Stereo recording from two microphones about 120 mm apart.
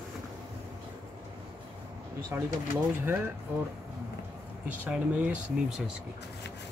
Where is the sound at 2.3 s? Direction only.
15° right (ahead or behind).